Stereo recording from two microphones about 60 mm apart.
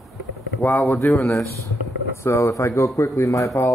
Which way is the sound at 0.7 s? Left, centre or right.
Left.